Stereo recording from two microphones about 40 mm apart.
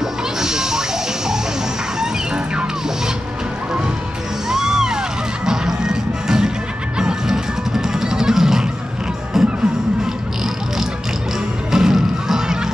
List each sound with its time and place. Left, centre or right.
0.4 s music: centre
4.5 s music: centre
11.7 s music: centre